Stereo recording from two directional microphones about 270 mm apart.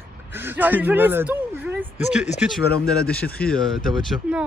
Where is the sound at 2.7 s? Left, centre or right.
Left.